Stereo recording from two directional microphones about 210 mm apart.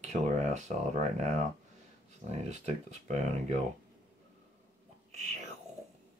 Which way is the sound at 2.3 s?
35° right (ahead or behind).